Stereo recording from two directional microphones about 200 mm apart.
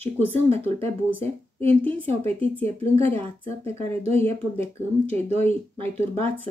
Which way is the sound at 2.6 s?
30° right (ahead or behind).